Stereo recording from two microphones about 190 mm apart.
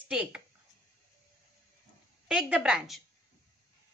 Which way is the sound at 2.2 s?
5° right (ahead or behind).